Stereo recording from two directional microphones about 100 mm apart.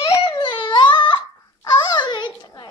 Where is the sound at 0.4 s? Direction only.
55° left (ahead or behind).